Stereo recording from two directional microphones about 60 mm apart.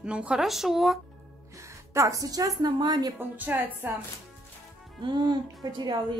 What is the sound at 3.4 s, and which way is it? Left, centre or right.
Speech, right.